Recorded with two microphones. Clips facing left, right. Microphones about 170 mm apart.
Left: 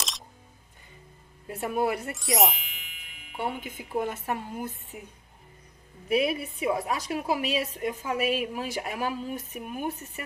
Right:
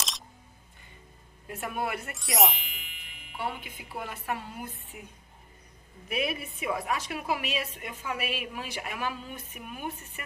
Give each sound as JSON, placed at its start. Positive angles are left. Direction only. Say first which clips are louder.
{"t": 1.5, "sound": "a woman's voice", "louder": "left 6 dB", "side_deg": 35}
{"t": 2.1, "sound": "music", "louder": "left 2 dB", "side_deg": 0}
{"t": 3.3, "sound": "speech", "louder": "left 3 dB", "side_deg": 45}
{"t": 6.0, "sound": "a woman's voice", "louder": "left 6 dB", "side_deg": 30}